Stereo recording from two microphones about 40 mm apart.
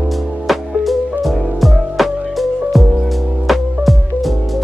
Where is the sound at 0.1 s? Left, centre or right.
Centre.